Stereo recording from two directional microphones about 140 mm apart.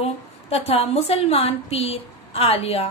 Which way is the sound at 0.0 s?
45° left (ahead or behind).